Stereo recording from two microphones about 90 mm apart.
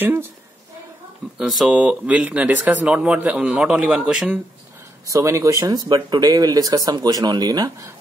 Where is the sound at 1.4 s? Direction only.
5° right (ahead or behind).